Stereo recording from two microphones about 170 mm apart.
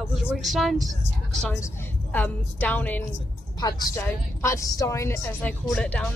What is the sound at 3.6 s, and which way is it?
A woman's voice, 20° left (ahead or behind).